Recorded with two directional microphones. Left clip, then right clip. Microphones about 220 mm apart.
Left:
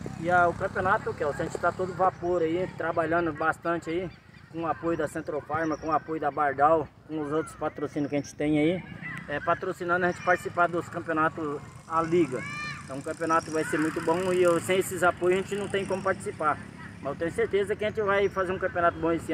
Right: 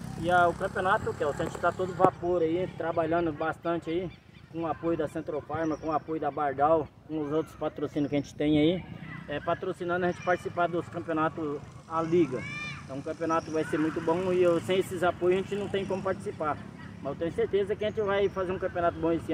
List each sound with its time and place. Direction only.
0.7 s speech: 5° right (ahead or behind)
2.4 s speech: 5° right (ahead or behind)
12.4 s a sound: 55° right (ahead or behind)
13.0 s speech: centre (ahead or behind)